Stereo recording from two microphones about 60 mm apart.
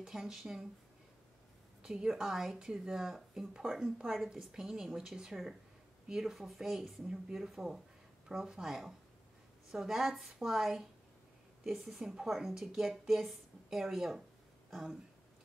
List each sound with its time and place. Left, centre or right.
0.0 s speech: centre
1.8 s a woman's voice: centre